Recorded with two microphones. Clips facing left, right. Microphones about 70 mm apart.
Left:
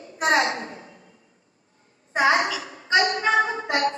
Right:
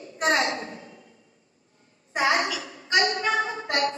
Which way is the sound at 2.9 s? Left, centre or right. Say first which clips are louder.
Left 3 dB; left.